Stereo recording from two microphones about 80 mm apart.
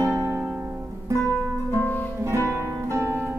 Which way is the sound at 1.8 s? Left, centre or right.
Left.